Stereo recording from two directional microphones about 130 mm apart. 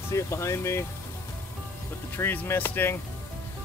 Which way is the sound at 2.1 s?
15° left (ahead or behind).